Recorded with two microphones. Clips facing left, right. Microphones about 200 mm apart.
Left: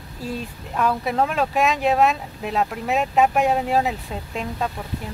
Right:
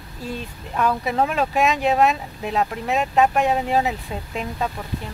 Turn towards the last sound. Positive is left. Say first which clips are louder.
# even
turn(degrees=0)  # may be behind; listen again after turning